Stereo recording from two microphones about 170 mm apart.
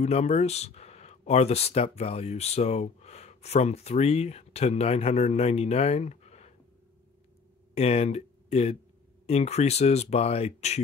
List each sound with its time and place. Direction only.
0.0 s speech: 40° left (ahead or behind)
7.7 s speech: 35° left (ahead or behind)